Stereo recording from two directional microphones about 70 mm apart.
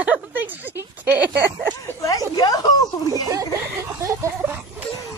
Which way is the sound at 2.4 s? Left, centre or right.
Left.